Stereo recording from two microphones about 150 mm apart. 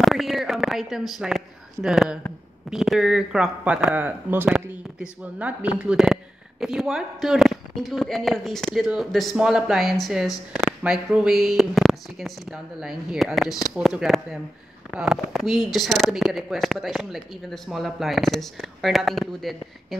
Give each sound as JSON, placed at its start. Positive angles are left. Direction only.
{"t": 0.0, "sound": "speech", "side_deg": 0}